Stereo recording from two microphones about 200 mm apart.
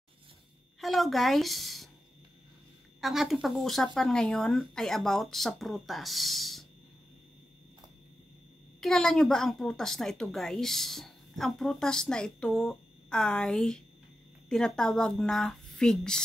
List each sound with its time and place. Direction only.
0.7 s a woman's voice: centre (ahead or behind)
3.0 s a woman's voice: centre (ahead or behind)
8.8 s a woman's voice: 5° left (ahead or behind)